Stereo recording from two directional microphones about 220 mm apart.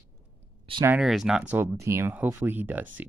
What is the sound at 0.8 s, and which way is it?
Speech, 5° right (ahead or behind).